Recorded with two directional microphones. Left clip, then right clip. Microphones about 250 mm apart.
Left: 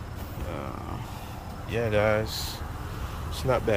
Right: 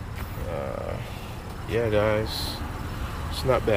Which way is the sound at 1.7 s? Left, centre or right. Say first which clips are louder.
Right 1 dB; centre.